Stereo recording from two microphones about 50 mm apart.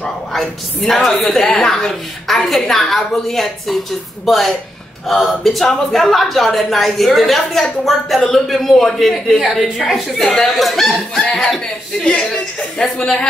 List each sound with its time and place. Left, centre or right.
0.3 s a woman's voice: centre
11.2 s a woman's voice: left